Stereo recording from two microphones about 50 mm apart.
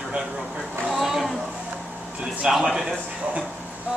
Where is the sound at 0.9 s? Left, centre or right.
Centre.